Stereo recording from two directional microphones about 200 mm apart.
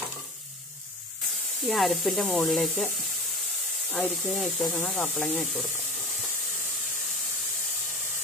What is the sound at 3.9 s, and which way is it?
Speech, centre (ahead or behind).